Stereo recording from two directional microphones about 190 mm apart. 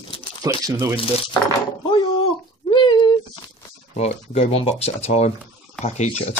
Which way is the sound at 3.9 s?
35° left (ahead or behind).